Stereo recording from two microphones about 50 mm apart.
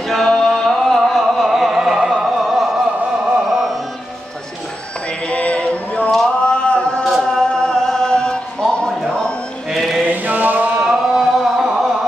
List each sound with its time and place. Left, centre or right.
0.1 s music: centre
2.2 s opera: centre
3.4 s music: centre
5.2 s singing: left
7.2 s music: centre
9.7 s mantra: centre
10.0 s mantra: right
10.8 s a sound: centre